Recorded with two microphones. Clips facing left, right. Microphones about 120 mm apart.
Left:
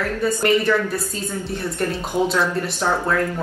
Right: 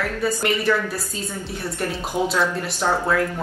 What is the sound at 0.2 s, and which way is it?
A woman's voice, centre (ahead or behind).